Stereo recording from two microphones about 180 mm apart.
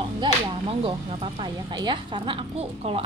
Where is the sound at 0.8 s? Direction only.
30° right (ahead or behind).